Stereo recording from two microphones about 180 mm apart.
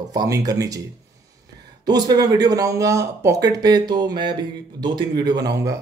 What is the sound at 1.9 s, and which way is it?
Speech, 20° right (ahead or behind).